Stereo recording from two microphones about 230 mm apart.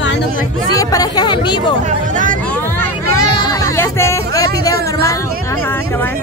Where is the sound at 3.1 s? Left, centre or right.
Centre.